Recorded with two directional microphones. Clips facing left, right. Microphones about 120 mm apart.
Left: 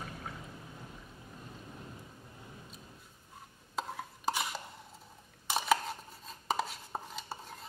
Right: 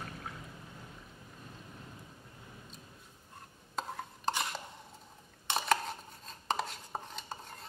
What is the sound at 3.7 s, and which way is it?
Stir, centre (ahead or behind).